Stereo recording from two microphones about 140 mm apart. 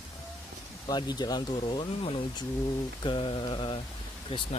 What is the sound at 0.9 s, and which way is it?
Speech, 30° left (ahead or behind).